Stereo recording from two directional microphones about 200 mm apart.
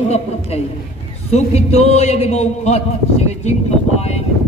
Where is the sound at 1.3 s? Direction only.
30° left (ahead or behind).